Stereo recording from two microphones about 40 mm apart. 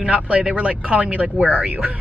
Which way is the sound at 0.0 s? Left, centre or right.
Right.